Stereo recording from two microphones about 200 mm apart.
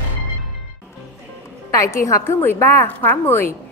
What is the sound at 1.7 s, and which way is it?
Speech, 15° left (ahead or behind).